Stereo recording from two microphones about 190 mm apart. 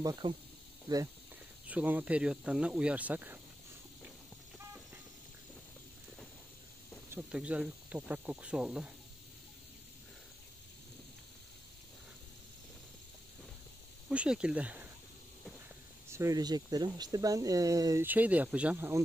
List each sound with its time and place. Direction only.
0.0 s speech: 20° right (ahead or behind)
1.7 s speech: 10° right (ahead or behind)
7.1 s speech: 5° right (ahead or behind)
14.0 s speech: 5° right (ahead or behind)
16.1 s speech: 15° right (ahead or behind)